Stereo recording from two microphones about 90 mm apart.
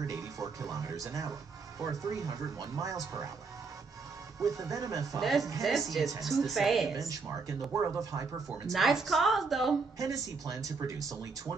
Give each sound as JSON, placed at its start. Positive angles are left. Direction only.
{"t": 0.0, "sound": "speech", "side_deg": -40}
{"t": 4.4, "sound": "speech", "side_deg": -40}
{"t": 5.2, "sound": "a woman's voice", "side_deg": 0}
{"t": 7.0, "sound": "speech", "side_deg": -40}
{"t": 8.7, "sound": "a woman's voice", "side_deg": 0}
{"t": 9.9, "sound": "speech", "side_deg": -40}